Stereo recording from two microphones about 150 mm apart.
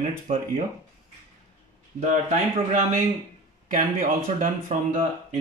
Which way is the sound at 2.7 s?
60° right (ahead or behind).